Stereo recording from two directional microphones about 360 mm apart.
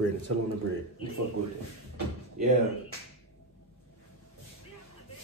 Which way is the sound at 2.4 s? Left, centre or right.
Right.